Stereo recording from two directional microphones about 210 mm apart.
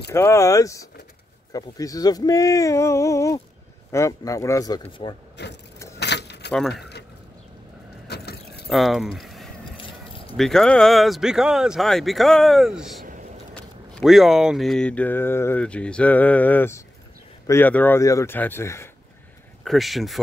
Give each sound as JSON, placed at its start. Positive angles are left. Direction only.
{"t": 0.1, "sound": "speech", "side_deg": 15}
{"t": 5.4, "sound": "vehicle", "side_deg": 55}
{"t": 5.9, "sound": "keys jangling", "side_deg": 55}
{"t": 8.1, "sound": "keys jangling", "side_deg": 50}
{"t": 8.6, "sound": "speech", "side_deg": 0}
{"t": 9.8, "sound": "keys jangling", "side_deg": 25}
{"t": 10.3, "sound": "speech", "side_deg": 0}
{"t": 19.6, "sound": "speech", "side_deg": 0}